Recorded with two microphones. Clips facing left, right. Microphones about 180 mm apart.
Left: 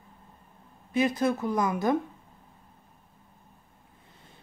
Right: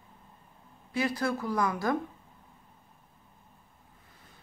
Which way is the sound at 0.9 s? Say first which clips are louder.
Left 5 dB; 20° left (ahead or behind).